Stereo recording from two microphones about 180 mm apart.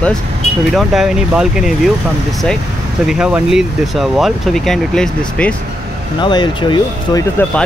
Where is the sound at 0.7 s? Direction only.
Centre (ahead or behind).